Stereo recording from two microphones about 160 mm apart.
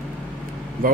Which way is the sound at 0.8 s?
60° right (ahead or behind).